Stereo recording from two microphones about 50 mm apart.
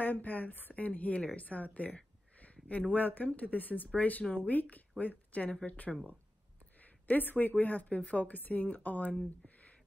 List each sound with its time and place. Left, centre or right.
0.0 s speech: left
2.3 s a sound: left
2.9 s speech: left